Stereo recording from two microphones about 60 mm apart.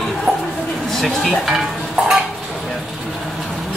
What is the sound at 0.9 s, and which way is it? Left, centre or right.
Speech, centre.